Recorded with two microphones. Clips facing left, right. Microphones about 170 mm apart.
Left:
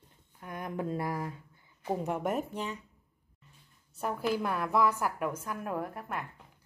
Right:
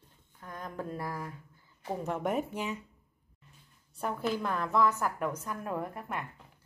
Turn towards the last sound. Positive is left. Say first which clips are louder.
# even
turn(degrees=0)  # may be behind; listen again after turning